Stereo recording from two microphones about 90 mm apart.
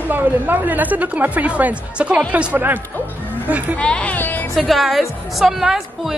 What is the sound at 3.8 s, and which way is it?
Speech, 15° left (ahead or behind).